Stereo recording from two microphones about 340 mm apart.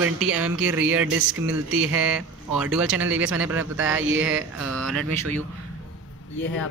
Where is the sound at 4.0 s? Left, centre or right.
Right.